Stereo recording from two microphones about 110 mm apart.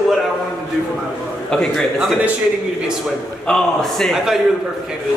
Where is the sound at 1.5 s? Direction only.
5° left (ahead or behind).